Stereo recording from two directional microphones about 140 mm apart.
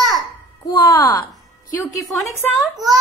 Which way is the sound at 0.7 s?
35° left (ahead or behind).